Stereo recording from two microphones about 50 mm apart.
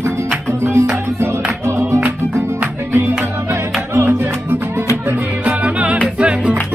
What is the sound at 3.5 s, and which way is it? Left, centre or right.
Music, right.